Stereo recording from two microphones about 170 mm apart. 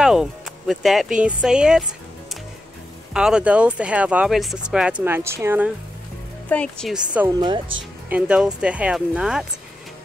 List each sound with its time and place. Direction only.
0.0 s speech: 5° right (ahead or behind)
3.1 s speech: 5° right (ahead or behind)
6.5 s speech: 5° left (ahead or behind)
7.2 s speech: 20° right (ahead or behind)
8.1 s speech: 5° right (ahead or behind)